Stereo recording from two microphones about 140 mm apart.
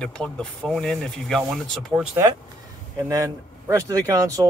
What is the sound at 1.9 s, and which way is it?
Speech, 10° right (ahead or behind).